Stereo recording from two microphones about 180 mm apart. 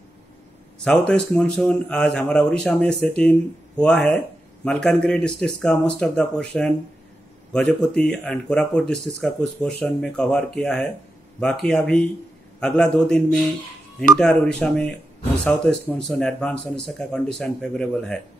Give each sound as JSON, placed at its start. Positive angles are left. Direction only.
{"t": 0.8, "sound": "speech", "side_deg": 5}